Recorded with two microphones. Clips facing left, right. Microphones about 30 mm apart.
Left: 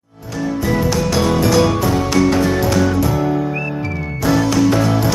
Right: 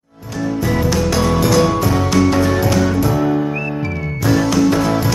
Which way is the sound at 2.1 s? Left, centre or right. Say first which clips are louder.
Right 1 dB; centre.